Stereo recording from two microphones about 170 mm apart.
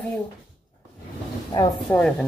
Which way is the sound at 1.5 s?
20° left (ahead or behind).